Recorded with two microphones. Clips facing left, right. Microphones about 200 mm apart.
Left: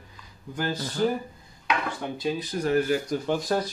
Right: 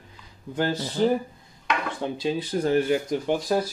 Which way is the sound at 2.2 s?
30° right (ahead or behind).